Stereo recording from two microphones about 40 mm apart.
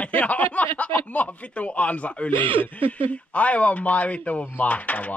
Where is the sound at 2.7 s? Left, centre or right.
Left.